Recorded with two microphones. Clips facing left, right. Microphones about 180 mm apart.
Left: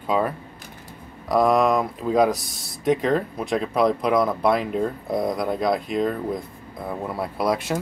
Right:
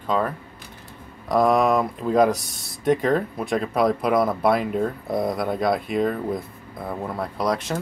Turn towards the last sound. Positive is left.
turn(degrees=5)  # may be behind; listen again after turning